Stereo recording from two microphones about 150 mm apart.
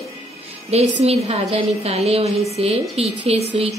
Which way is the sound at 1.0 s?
40° right (ahead or behind).